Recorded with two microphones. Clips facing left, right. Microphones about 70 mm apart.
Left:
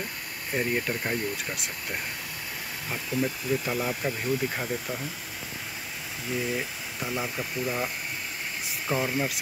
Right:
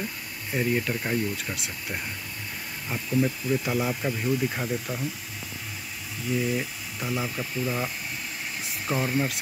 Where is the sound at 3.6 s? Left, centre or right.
Centre.